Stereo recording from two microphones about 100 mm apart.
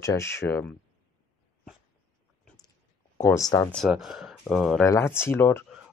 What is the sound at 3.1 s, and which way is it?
Speech, 35° left (ahead or behind).